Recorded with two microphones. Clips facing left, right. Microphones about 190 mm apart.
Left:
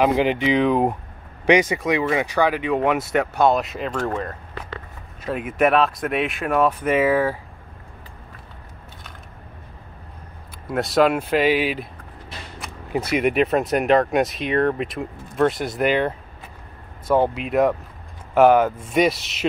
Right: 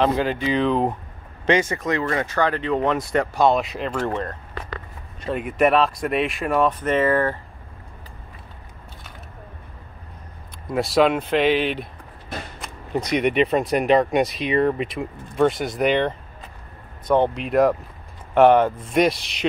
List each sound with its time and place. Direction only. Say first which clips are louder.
0.0 s speech: left 2 dB; 15° left (ahead or behind)
10.7 s speech: even; centre (ahead or behind)
12.9 s speech: even; 5° left (ahead or behind)